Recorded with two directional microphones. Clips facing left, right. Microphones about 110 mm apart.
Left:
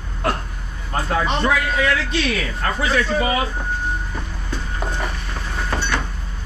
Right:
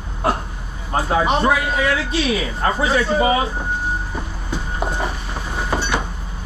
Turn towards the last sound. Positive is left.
turn(degrees=-15)  # may be behind; listen again after turning